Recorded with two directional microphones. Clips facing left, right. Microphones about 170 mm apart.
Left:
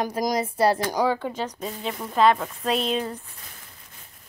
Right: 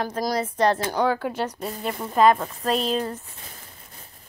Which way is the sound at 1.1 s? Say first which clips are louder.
Right 1 dB; 5° right (ahead or behind).